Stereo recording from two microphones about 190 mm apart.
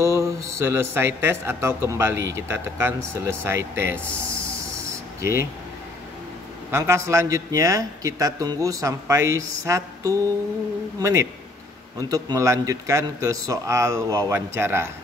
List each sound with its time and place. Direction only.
0.0 s speech: 15° right (ahead or behind)
4.3 s a sound: 15° right (ahead or behind)
6.7 s speech: 15° right (ahead or behind)